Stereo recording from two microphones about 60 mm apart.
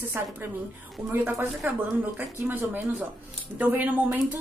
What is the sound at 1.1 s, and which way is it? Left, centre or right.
Speech, right.